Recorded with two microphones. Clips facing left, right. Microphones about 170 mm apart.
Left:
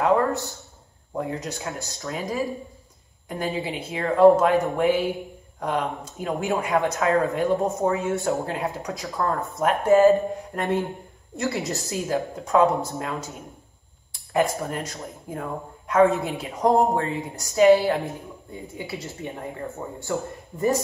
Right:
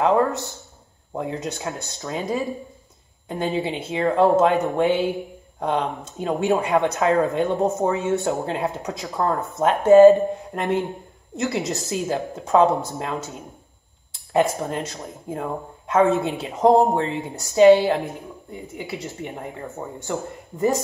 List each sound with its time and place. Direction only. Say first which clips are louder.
0.0 s speech: right 2 dB; 20° right (ahead or behind)
14.3 s speech: right 3 dB; 20° right (ahead or behind)
20.0 s speech: left 1 dB; 20° right (ahead or behind)